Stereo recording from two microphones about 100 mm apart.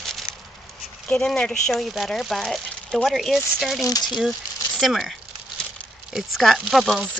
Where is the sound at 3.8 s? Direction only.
40° left (ahead or behind).